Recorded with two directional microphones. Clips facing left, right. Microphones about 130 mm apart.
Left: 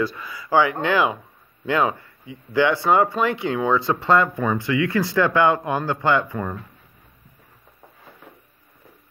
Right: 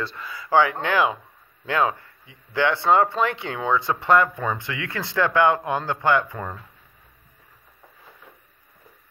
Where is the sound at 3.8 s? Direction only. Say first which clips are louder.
Left 3 dB; 15° right (ahead or behind).